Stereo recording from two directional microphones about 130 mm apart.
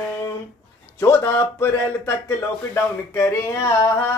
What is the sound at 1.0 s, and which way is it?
Speech, 20° left (ahead or behind).